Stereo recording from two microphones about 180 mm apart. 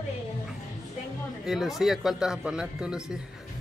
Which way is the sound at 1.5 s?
Centre (ahead or behind).